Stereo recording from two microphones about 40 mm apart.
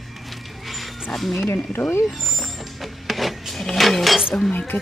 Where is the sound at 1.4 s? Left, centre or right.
Left.